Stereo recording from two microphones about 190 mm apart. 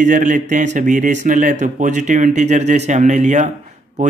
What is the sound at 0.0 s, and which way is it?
Speech, 45° right (ahead or behind).